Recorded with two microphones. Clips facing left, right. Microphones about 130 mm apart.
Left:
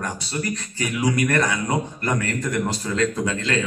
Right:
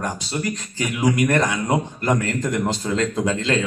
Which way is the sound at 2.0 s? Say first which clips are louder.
Right 4 dB; 25° right (ahead or behind).